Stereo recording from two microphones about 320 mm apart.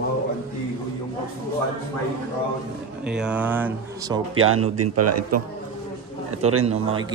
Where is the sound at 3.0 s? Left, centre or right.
Centre.